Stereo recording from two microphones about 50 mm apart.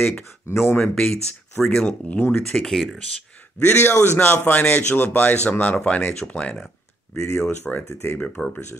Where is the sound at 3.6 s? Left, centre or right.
Left.